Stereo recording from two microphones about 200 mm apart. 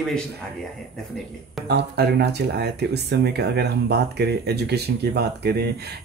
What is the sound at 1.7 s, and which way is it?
Speech, 55° right (ahead or behind).